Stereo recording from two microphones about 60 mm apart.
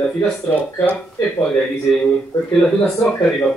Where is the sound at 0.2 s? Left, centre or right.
Centre.